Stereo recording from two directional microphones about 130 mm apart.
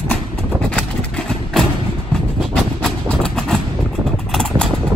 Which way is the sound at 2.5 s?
5° left (ahead or behind).